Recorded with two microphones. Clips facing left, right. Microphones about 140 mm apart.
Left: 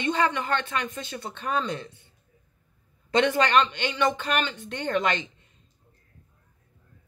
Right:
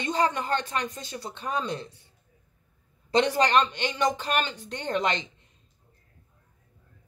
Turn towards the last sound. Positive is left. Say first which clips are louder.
# left 1 dB
turn(degrees=-35)  # may be behind; listen again after turning